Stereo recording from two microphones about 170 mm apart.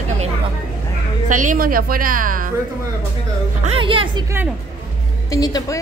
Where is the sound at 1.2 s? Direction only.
50° right (ahead or behind).